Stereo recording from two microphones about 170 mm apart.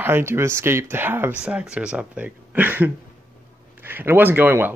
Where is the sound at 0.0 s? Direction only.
15° right (ahead or behind).